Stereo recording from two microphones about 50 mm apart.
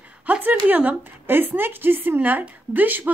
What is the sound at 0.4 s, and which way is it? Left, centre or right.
A woman's voice, right.